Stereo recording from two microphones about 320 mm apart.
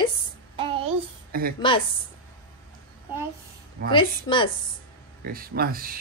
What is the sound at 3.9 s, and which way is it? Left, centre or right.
Speech, centre.